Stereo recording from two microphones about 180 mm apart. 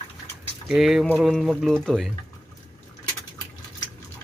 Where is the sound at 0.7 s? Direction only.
Centre (ahead or behind).